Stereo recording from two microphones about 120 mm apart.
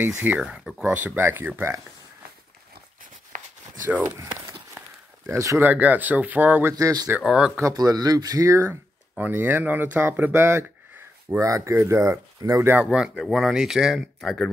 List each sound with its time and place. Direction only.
0.0 s speech: 15° right (ahead or behind)
3.8 s speech: 15° right (ahead or behind)
5.3 s speech: 25° right (ahead or behind)
5.7 s speech: 15° right (ahead or behind)
6.7 s speech: 30° right (ahead or behind)
7.2 s speech: 5° right (ahead or behind)
7.6 s speech: 30° right (ahead or behind)
8.6 s speech: 15° right (ahead or behind)
12.9 s speech: centre (ahead or behind)